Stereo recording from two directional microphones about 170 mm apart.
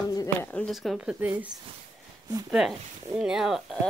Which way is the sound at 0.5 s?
10° left (ahead or behind).